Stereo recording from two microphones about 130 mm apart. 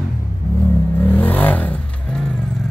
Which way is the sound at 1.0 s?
15° left (ahead or behind).